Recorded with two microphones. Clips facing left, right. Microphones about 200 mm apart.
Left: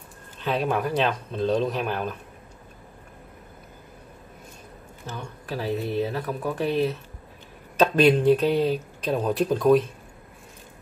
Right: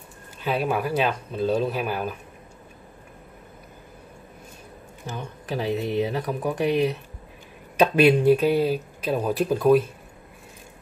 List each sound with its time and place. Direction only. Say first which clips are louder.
0.4 s speech: even; 10° right (ahead or behind)
5.0 s speech: right 2 dB; 20° right (ahead or behind)